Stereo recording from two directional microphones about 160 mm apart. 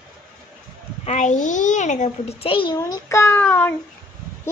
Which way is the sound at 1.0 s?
45° left (ahead or behind).